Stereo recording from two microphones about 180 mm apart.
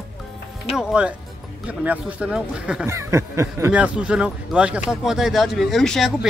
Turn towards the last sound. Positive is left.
turn(degrees=0)  # may be behind; listen again after turning